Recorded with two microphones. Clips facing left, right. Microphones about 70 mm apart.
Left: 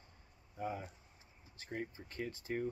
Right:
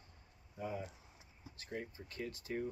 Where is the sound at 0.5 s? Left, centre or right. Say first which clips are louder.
Left 1 dB; left.